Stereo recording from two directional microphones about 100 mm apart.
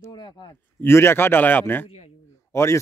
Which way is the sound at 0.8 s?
25° left (ahead or behind).